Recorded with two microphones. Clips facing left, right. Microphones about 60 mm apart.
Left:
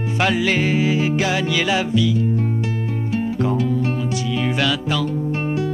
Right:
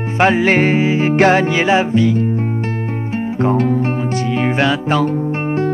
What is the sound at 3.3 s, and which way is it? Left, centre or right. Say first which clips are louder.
Music: right 8 dB; right.